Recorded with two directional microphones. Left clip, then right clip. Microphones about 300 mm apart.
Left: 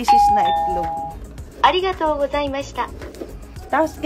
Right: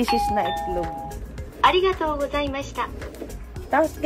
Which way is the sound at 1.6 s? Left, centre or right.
Left.